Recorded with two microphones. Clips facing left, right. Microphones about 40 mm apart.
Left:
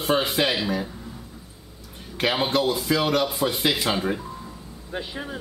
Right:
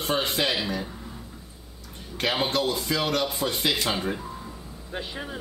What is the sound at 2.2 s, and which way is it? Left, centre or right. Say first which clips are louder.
Speech: left 3 dB; centre.